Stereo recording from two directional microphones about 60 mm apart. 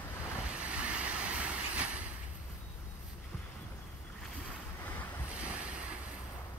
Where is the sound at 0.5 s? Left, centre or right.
Centre.